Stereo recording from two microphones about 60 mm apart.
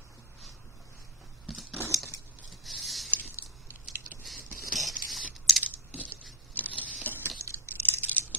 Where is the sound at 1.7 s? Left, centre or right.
Right.